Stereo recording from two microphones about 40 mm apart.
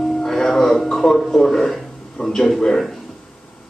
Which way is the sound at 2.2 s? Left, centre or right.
Left.